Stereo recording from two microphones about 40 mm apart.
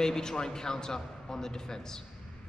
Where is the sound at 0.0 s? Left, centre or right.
Centre.